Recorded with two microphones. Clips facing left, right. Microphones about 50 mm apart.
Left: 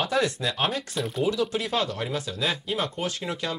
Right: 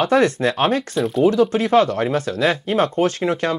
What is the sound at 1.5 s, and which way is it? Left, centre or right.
Speech, right.